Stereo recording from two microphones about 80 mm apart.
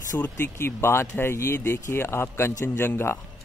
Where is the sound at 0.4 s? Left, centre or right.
Left.